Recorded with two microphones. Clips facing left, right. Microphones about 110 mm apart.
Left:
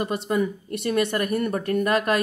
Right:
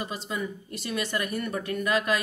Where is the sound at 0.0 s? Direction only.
55° left (ahead or behind).